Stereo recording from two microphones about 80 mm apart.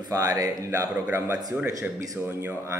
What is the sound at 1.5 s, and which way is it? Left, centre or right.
Speech, centre.